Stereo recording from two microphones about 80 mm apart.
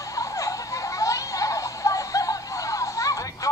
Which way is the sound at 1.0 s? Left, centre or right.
Left.